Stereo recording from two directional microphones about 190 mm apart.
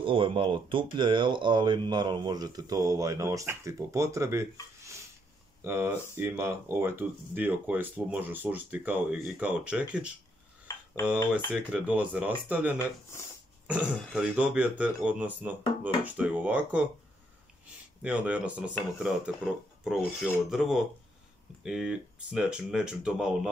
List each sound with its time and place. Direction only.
0.0 s speech: 25° right (ahead or behind); by 10.1 s 5° right (ahead or behind)
11.5 s speech: 5° right (ahead or behind)
18.0 s speech: 5° right (ahead or behind)